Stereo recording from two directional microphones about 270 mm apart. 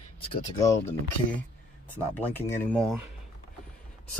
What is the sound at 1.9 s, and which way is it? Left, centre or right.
Speech, centre.